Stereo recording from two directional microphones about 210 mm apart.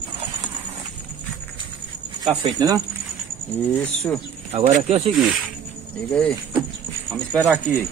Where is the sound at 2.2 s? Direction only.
20° right (ahead or behind).